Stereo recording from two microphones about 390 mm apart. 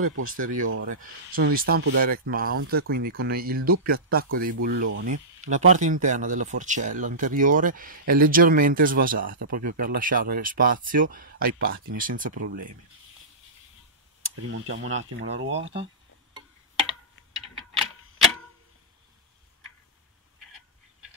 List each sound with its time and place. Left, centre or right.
0.0 s speech: right
0.4 s speech: right
0.7 s speech: right
14.5 s speech: right
17.7 s clock: centre